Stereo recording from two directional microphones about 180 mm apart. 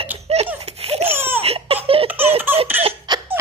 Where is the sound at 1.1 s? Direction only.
10° right (ahead or behind).